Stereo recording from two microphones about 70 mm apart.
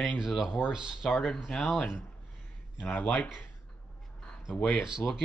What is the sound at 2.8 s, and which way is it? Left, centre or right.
Speech, left.